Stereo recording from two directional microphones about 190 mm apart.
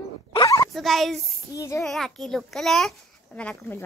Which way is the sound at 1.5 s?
15° left (ahead or behind).